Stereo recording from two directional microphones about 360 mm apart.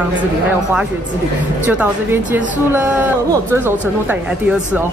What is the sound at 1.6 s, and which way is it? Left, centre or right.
Speech, centre.